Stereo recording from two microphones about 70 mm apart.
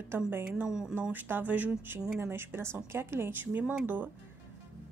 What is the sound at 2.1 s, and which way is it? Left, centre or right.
Speech, right.